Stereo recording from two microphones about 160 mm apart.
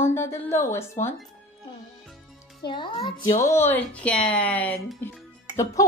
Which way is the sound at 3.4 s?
15° left (ahead or behind).